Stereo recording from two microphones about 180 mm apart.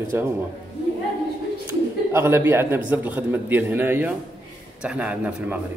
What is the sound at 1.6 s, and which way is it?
Speech, 15° right (ahead or behind).